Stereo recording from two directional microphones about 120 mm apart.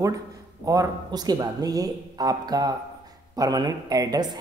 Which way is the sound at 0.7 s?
30° right (ahead or behind).